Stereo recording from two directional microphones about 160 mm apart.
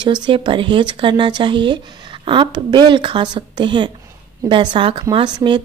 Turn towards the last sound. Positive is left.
turn(degrees=-25)  # may be behind; listen again after turning